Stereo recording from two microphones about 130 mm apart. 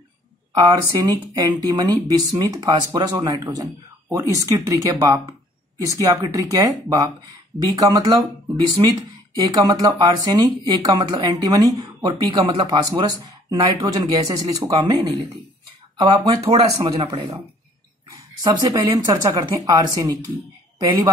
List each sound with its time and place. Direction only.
0.5 s speech: 25° right (ahead or behind)
18.4 s speech: 35° right (ahead or behind)